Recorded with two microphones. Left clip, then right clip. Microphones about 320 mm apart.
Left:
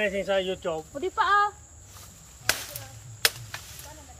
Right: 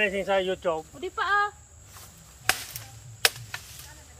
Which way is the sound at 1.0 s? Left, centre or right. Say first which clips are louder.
Left 4 dB; centre.